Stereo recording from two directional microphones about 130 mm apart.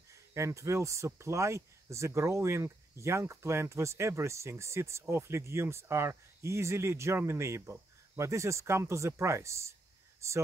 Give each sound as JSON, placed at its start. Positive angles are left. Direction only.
{"t": 0.1, "sound": "speech", "side_deg": -25}